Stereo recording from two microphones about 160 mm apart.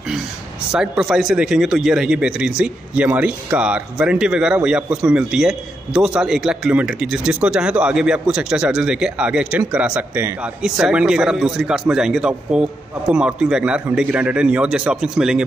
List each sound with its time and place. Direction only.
0.7 s a man's voice: 5° right (ahead or behind)